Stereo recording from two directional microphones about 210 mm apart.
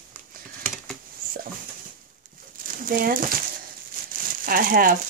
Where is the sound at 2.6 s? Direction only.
40° right (ahead or behind).